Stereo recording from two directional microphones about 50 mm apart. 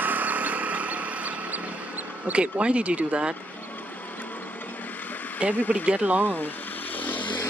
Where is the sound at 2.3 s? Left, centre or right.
Right.